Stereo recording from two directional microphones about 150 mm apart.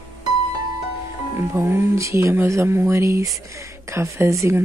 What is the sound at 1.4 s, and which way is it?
Speech, 15° right (ahead or behind).